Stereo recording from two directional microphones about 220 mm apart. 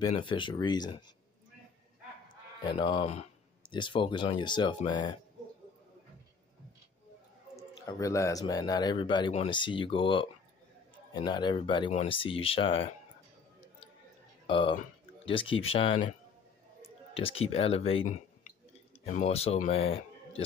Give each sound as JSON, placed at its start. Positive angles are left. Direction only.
{"t": 0.0, "sound": "speech", "side_deg": 20}
{"t": 2.6, "sound": "speech", "side_deg": 20}
{"t": 7.5, "sound": "speech", "side_deg": 15}
{"t": 11.2, "sound": "speech", "side_deg": 20}
{"t": 14.5, "sound": "speech", "side_deg": 25}